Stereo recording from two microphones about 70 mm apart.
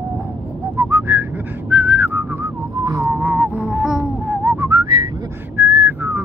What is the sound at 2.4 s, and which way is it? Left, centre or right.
Whistling, right.